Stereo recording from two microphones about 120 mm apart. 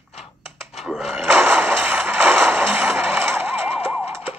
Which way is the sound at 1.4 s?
20° right (ahead or behind).